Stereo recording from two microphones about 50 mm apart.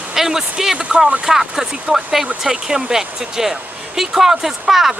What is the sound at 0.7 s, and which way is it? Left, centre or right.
Speech, right.